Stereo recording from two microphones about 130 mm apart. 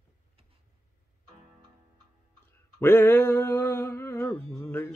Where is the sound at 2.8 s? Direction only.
15° left (ahead or behind).